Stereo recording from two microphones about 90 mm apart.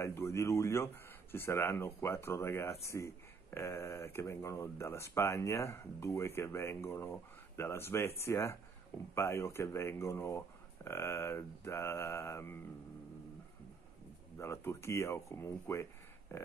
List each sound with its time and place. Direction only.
0.0 s speech: 30° left (ahead or behind)
14.4 s speech: 30° left (ahead or behind)